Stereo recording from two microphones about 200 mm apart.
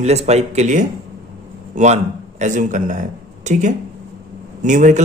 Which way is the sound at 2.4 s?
40° right (ahead or behind).